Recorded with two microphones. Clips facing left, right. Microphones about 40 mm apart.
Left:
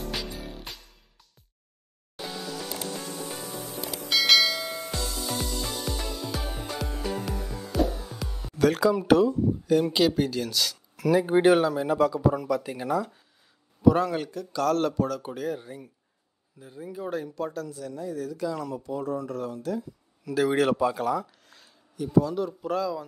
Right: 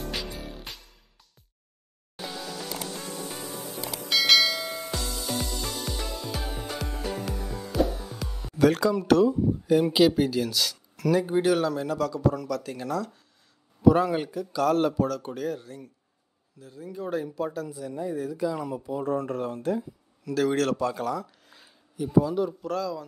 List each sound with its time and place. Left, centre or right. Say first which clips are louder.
0.0 s music: even; centre
2.2 s music: left 1 dB; centre
4.1 s bell: even; centre
5.9 s music: left 1 dB; centre
9.2 s speech: right 1 dB; centre
11.2 s speech: left 4 dB; left
11.6 s speech: left 3 dB; centre
13.8 s speech: right 1 dB; centre
15.0 s speech: right 1 dB; centre
19.0 s speech: right 6 dB; right
20.2 s speech: left 1 dB; centre
21.5 s a sound: right 1 dB; centre
22.6 s speech: left 2 dB; centre